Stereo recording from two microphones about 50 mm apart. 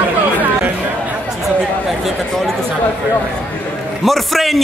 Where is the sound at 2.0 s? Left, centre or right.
Centre.